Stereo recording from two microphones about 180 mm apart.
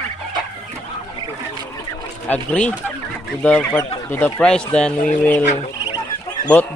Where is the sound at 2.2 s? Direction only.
5° left (ahead or behind).